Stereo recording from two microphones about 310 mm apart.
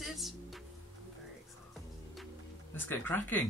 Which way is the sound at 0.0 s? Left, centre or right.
Centre.